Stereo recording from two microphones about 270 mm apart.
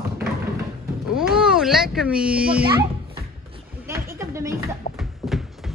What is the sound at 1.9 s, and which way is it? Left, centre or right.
Speech, centre.